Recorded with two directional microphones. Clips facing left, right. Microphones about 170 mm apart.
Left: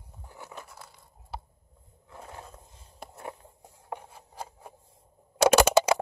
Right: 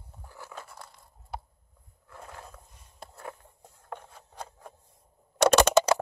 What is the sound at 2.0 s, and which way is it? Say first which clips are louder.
Skateboard: left 1 dB; 25° left (ahead or behind).